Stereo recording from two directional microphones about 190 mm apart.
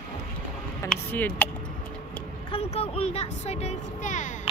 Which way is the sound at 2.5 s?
30° left (ahead or behind).